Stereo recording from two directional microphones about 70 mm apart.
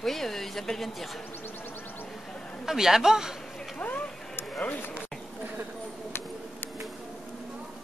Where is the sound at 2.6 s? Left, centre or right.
Centre.